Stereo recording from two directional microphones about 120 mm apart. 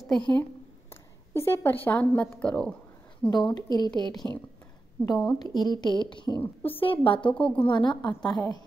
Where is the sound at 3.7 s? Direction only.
35° left (ahead or behind).